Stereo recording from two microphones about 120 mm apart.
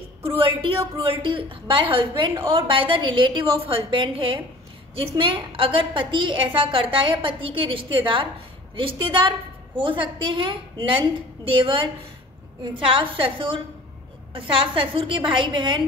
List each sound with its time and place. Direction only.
0.4 s a woman's voice: 50° right (ahead or behind)